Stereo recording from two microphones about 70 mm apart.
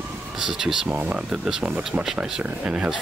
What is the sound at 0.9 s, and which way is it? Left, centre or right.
Speech, right.